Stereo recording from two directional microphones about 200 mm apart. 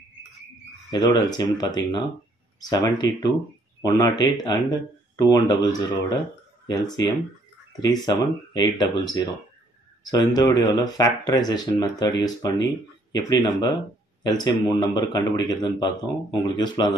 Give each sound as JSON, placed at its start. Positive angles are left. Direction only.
{"t": 0.8, "sound": "speech", "side_deg": 20}